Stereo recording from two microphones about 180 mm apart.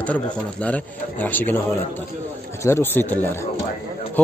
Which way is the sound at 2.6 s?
15° left (ahead or behind).